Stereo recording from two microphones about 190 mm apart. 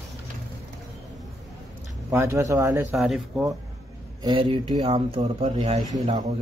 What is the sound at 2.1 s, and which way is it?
Speech, 15° right (ahead or behind).